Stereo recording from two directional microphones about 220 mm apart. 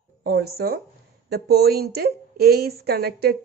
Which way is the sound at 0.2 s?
45° right (ahead or behind).